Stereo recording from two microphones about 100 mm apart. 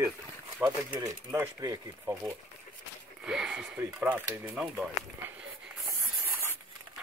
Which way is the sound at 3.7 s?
20° right (ahead or behind).